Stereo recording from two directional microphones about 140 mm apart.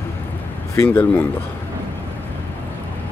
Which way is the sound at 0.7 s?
15° left (ahead or behind).